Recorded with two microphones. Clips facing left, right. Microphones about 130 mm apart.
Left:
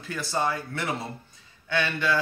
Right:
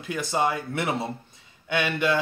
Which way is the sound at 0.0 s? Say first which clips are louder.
Right 3 dB; 20° right (ahead or behind).